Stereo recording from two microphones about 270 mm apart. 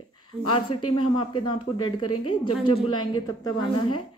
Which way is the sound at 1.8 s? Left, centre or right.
Left.